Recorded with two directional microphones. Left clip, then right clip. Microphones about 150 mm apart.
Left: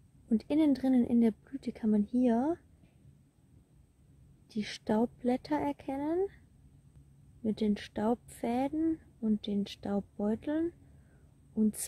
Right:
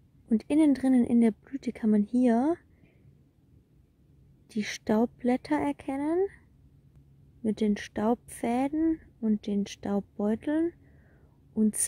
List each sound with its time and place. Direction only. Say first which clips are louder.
0.3 s speech: right 4 dB; 20° right (ahead or behind)
4.5 s speech: right 4 dB; 25° right (ahead or behind)
7.4 s speech: right 4 dB; 15° right (ahead or behind)